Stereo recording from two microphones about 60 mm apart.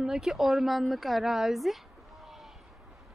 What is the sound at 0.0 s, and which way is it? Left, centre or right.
Speech, centre.